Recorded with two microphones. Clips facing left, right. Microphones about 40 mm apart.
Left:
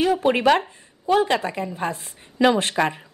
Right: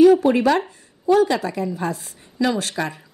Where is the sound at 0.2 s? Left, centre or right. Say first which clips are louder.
Right 1 dB; left.